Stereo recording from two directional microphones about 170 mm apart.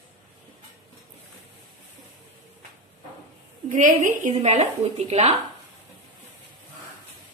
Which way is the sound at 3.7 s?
50° right (ahead or behind).